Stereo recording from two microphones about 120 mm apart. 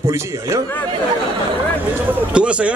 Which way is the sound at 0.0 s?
25° right (ahead or behind).